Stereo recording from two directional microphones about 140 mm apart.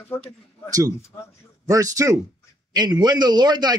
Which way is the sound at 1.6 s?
25° right (ahead or behind).